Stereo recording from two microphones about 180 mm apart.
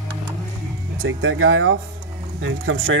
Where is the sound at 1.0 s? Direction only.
90° right.